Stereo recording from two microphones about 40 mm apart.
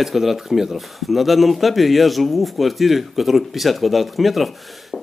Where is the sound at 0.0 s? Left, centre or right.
Centre.